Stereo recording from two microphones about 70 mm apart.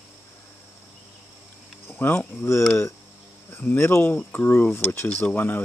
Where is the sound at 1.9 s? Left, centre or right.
Left.